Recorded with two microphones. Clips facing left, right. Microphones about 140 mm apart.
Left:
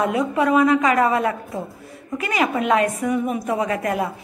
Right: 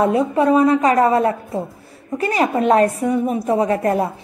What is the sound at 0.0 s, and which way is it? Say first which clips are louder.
A woman's voice: right 4 dB; 30° right (ahead or behind).